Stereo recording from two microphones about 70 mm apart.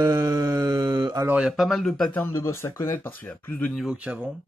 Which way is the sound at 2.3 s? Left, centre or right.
Left.